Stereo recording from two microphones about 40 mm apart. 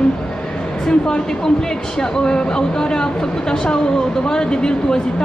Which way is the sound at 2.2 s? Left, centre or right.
Left.